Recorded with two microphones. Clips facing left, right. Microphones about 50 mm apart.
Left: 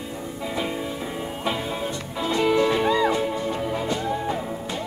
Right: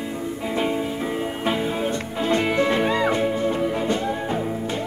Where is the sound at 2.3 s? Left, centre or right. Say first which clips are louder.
Even; right.